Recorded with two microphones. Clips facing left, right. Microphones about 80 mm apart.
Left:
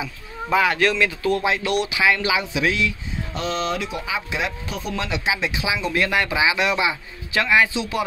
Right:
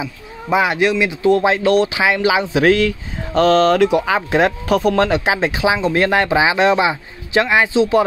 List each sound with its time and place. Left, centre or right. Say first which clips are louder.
0.0 s speech: right 3 dB; centre
1.2 s speech: right 8 dB; right
2.5 s speech: right 9 dB; right
4.3 s speech: right 12 dB; right